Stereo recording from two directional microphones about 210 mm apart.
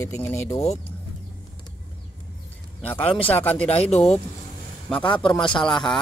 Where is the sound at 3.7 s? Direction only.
30° left (ahead or behind).